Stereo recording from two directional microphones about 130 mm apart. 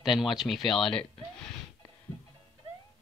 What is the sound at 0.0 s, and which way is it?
Speech, centre (ahead or behind).